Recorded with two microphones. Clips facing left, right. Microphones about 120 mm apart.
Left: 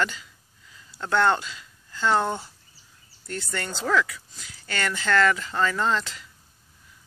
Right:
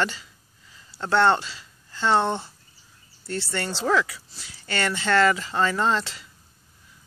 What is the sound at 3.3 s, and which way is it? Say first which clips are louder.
Speech: right 3 dB; 5° right (ahead or behind).